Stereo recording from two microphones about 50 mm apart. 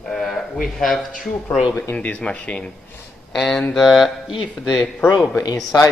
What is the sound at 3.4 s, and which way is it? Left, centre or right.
Speech, centre.